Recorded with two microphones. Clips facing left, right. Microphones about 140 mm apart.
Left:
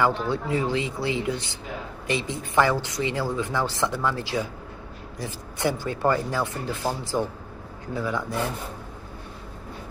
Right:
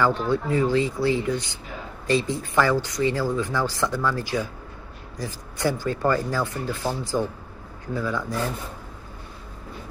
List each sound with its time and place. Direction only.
0.0 s speech: 20° left (ahead or behind)